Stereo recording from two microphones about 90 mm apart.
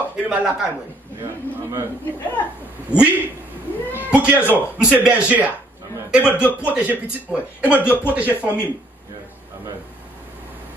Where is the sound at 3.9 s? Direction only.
15° right (ahead or behind).